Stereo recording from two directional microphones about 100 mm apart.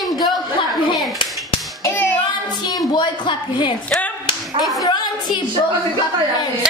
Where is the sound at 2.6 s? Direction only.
45° left (ahead or behind).